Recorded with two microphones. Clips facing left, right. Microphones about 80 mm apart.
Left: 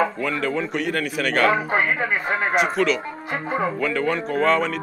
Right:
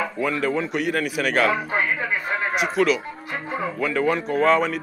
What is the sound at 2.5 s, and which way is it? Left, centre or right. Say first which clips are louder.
Speech: even; centre.